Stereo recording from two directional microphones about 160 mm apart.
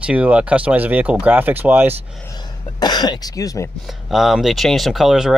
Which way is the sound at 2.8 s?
25° left (ahead or behind).